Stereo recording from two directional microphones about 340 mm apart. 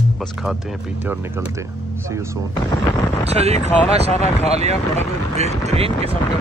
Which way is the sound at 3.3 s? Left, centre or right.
Centre.